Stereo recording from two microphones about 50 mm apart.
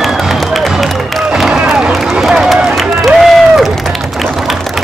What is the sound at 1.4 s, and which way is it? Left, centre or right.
Run, centre.